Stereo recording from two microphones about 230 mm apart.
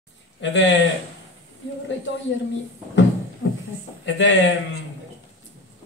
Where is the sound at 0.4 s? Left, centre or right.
Left.